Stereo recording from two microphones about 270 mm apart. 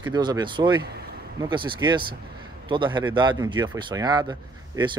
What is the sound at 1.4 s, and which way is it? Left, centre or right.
Speech, centre.